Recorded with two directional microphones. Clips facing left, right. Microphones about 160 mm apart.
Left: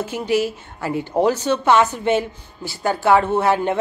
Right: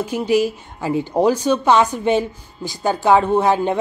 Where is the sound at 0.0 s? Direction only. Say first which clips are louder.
Right 3 dB; 15° right (ahead or behind).